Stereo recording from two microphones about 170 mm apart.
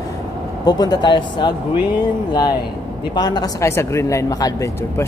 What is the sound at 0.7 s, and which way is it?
Speech, 25° left (ahead or behind).